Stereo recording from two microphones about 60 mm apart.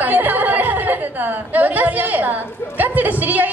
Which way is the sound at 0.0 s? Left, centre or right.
Right.